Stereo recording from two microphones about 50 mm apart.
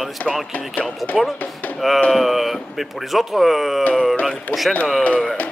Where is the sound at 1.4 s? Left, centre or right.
Left.